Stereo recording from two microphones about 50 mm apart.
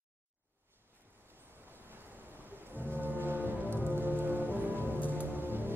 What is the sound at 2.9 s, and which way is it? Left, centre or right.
Music, right.